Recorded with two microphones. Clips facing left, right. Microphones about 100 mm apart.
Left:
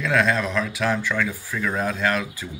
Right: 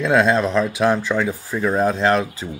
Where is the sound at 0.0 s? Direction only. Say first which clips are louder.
Right 5 dB; 25° right (ahead or behind).